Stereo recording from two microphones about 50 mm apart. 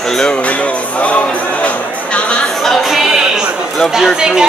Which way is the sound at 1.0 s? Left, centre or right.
Left.